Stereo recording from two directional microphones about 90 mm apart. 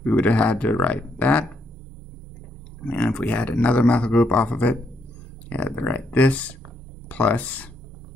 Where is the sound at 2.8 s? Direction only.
15° left (ahead or behind).